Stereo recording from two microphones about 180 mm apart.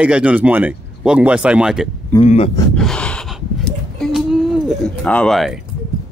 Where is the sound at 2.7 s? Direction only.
5° left (ahead or behind).